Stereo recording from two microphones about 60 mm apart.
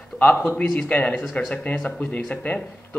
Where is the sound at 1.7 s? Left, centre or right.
Left.